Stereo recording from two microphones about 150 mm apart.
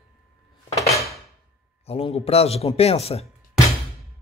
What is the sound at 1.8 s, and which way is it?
Speech, 40° left (ahead or behind).